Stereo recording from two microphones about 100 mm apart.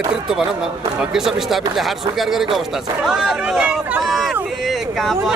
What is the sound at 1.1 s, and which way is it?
Speech, 5° right (ahead or behind).